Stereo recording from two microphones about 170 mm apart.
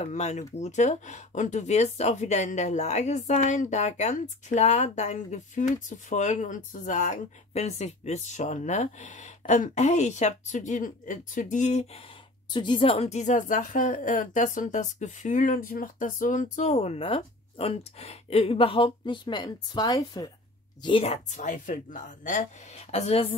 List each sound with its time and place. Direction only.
0.0 s speech: 45° left (ahead or behind)
12.4 s a woman's voice: 25° left (ahead or behind)
20.8 s a woman's voice: 35° left (ahead or behind)